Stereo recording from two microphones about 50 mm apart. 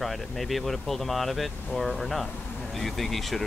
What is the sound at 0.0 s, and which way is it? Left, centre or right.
Speech, centre.